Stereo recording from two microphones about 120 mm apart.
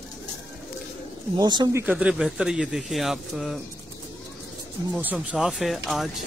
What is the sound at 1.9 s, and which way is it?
Speech, 10° right (ahead or behind).